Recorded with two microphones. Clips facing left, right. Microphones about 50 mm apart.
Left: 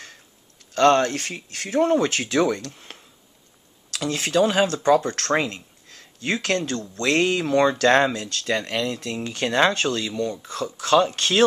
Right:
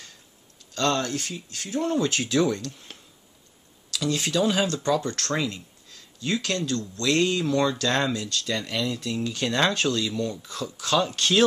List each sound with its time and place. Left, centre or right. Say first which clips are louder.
0.7 s speech: left 8 dB; left
3.9 s speech: left 3 dB; left
8.2 s speech: left 3 dB; left
9.5 s speech: left 4 dB; centre
10.3 s speech: left 4 dB; left
10.9 s speech: left 4 dB; left